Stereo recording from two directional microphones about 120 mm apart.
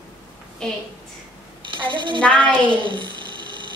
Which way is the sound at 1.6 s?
45° right (ahead or behind).